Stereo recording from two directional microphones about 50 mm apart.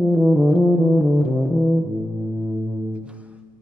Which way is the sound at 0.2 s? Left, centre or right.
Centre.